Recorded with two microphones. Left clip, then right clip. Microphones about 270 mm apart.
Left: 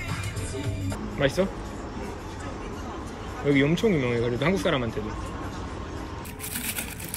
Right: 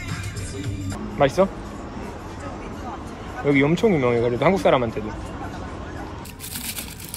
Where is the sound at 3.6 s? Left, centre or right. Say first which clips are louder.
Right 7 dB; right.